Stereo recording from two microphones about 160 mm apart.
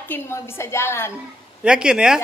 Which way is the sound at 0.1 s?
15° left (ahead or behind).